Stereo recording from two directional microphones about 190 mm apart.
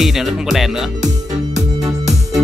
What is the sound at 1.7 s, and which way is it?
Music, 20° right (ahead or behind).